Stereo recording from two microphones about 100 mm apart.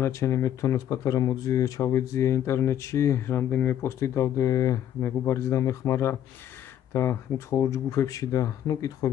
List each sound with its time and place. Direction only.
0.0 s speech: 30° left (ahead or behind)